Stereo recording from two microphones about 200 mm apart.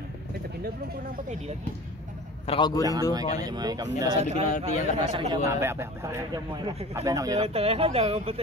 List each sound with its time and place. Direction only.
2.4 s a man's voice: 25° left (ahead or behind)
2.9 s speech: 15° right (ahead or behind)
4.2 s speech: 35° right (ahead or behind)
4.5 s a man's voice: 40° left (ahead or behind)
5.1 s speech: 25° right (ahead or behind)
5.5 s speech: 10° right (ahead or behind)
7.3 s speech: 30° right (ahead or behind)